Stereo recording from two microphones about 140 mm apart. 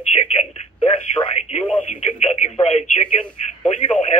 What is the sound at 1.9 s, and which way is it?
Speech, 50° left (ahead or behind).